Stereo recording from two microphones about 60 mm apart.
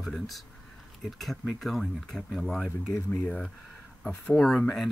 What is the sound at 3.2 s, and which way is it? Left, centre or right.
Speech, centre.